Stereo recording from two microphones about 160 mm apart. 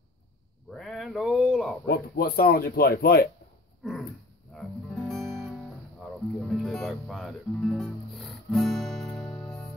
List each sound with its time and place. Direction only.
0.7 s a sound: centre (ahead or behind)
1.9 s speech: 70° left (ahead or behind)
4.6 s guitar: centre (ahead or behind)
6.4 s music: centre (ahead or behind)